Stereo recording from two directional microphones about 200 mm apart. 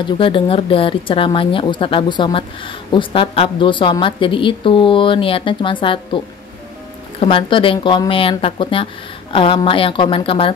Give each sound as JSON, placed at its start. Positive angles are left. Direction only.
{"t": 0.0, "sound": "a woman's voice", "side_deg": 25}
{"t": 7.2, "sound": "a woman's voice", "side_deg": 25}